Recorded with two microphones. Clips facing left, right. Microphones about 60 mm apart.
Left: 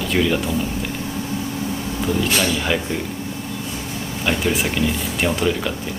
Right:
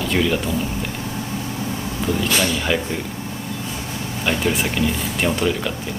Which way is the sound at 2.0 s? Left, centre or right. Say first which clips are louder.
Even; centre.